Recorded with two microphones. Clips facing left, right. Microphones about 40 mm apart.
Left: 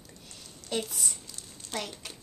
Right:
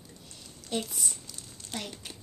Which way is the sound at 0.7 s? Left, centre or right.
Left.